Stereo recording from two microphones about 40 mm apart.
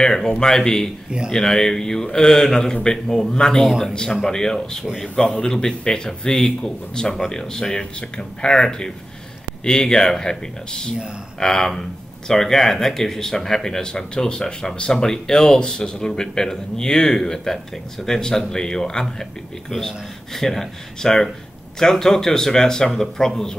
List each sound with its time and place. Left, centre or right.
0.0 s speech: centre
3.6 s a man's voice: centre
4.3 s speech: centre
20.3 s speech: centre